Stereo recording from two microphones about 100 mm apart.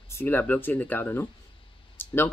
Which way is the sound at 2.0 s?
20° left (ahead or behind).